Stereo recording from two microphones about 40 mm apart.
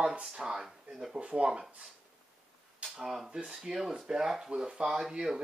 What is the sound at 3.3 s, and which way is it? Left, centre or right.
Speech, right.